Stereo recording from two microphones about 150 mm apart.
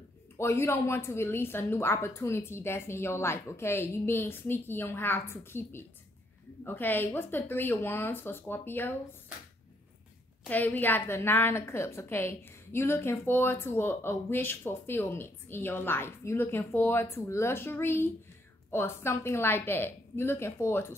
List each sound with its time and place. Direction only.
0.4 s a woman's voice: 15° left (ahead or behind)
10.5 s a woman's voice: 10° left (ahead or behind)